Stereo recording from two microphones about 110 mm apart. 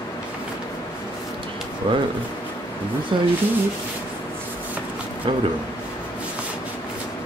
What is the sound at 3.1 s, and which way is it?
Speech, 50° right (ahead or behind).